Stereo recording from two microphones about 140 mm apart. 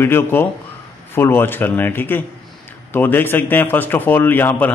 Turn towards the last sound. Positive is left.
turn(degrees=15)  # may be behind; listen again after turning